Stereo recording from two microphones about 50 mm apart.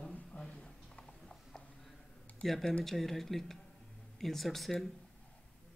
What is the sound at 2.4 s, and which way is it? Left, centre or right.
Speech, centre.